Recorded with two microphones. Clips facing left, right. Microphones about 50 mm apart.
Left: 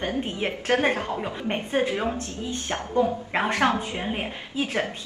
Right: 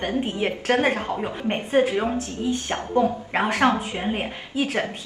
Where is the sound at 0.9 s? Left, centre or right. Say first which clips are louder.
Right 2 dB; right.